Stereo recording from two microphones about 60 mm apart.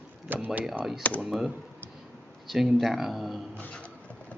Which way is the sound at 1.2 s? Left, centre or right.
Centre.